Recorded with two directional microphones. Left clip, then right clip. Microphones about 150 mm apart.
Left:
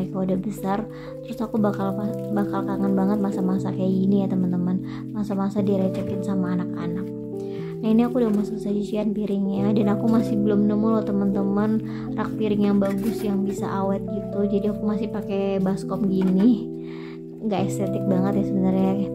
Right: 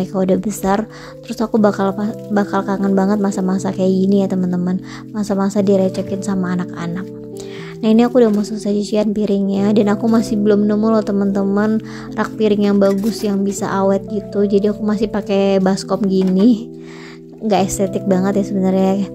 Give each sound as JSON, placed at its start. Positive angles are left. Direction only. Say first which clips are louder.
{"t": 0.0, "sound": "speech", "louder": "right 10 dB", "side_deg": -40}